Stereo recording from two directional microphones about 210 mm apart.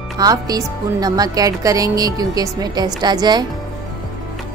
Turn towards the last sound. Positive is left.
turn(degrees=-20)  # may be behind; listen again after turning